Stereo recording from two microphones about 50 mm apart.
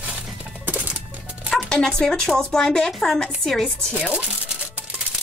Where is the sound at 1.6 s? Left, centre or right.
Centre.